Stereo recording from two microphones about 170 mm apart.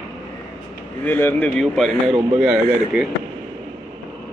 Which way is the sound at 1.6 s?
Centre (ahead or behind).